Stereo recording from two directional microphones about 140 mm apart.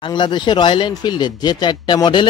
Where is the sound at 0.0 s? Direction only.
35° left (ahead or behind).